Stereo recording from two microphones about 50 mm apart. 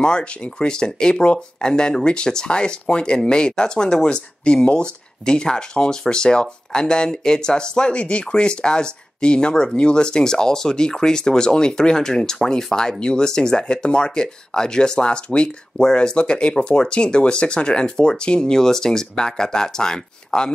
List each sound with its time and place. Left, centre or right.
0.0 s speech: centre